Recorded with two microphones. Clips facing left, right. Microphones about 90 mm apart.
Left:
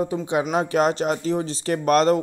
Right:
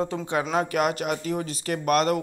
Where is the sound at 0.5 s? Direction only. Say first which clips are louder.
Left 4 dB; 30° left (ahead or behind).